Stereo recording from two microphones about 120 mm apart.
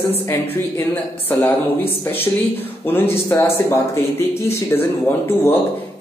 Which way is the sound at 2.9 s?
20° left (ahead or behind).